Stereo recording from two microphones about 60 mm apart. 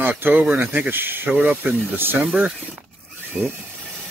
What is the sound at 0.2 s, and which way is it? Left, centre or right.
Speech, right.